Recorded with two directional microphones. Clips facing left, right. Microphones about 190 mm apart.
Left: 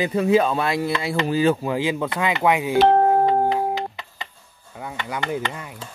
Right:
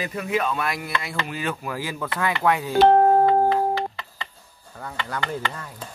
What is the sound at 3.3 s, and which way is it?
Music, 20° left (ahead or behind).